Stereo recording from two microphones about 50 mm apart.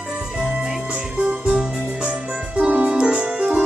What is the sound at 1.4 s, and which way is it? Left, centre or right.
Music, centre.